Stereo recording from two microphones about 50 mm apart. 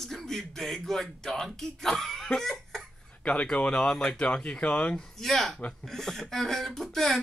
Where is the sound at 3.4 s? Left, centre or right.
Left.